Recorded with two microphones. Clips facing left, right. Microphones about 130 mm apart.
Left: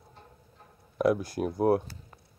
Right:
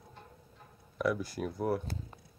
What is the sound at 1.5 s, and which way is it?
Speech, 60° left (ahead or behind).